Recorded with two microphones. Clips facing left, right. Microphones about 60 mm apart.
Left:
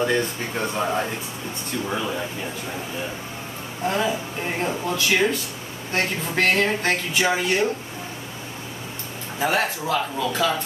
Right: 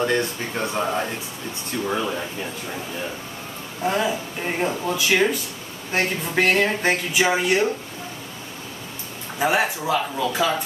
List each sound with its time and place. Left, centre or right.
0.0 s speech: centre
3.8 s speech: centre
9.4 s speech: centre